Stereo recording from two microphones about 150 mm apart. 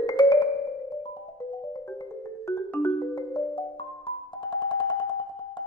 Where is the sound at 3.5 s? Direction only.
35° left (ahead or behind).